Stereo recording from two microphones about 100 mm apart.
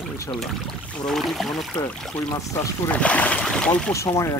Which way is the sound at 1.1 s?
Centre (ahead or behind).